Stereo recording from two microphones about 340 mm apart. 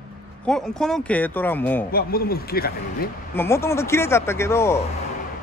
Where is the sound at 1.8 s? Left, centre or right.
Left.